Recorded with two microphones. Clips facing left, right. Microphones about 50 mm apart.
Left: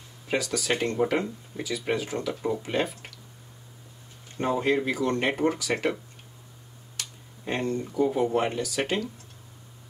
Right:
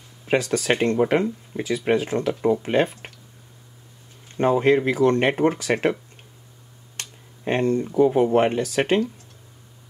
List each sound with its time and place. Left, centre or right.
0.3 s speech: right
4.4 s speech: right
7.0 s computer keyboard: right
7.9 s speech: right